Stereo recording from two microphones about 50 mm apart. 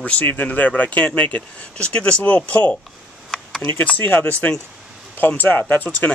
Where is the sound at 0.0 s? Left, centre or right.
Left.